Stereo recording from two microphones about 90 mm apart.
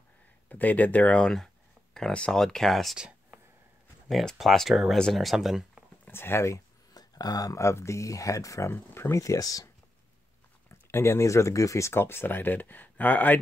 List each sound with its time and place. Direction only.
0.5 s speech: 20° left (ahead or behind); by 3.0 s centre (ahead or behind)
3.0 s a sound: 15° right (ahead or behind)
4.1 s speech: centre (ahead or behind)
6.0 s speech: 25° left (ahead or behind)
6.9 s speech: 45° left (ahead or behind); by 9.2 s 25° left (ahead or behind)
9.2 s speech: 40° left (ahead or behind)
10.7 s speech: 30° left (ahead or behind)